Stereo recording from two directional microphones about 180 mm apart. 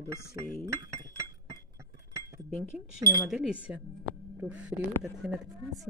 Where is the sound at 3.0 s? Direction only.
15° right (ahead or behind).